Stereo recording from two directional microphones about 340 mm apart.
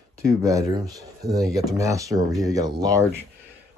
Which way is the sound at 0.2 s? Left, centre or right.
Centre.